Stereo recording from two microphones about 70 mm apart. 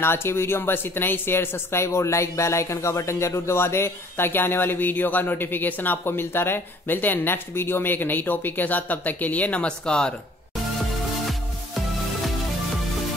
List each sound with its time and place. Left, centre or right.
0.0 s speech: left; by 10.1 s centre